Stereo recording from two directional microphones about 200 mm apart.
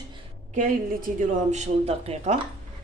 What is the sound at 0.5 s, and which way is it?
Speech, 40° right (ahead or behind).